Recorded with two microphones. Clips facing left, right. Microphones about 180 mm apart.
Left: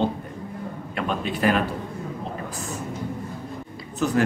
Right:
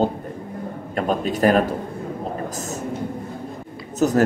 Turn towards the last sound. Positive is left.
turn(degrees=-40)  # may be behind; listen again after turning